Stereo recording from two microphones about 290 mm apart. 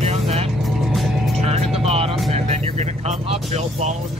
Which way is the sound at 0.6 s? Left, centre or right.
Centre.